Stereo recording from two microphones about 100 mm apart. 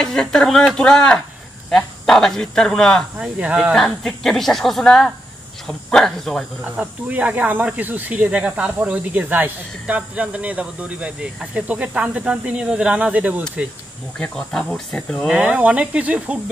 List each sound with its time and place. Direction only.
0.0 s speech: 5° left (ahead or behind)
3.2 s speech: 10° right (ahead or behind)
3.7 s speech: 5° left (ahead or behind)
6.6 s speech: 15° right (ahead or behind)
14.1 s speech: 5° left (ahead or behind); by 16.3 s 10° right (ahead or behind)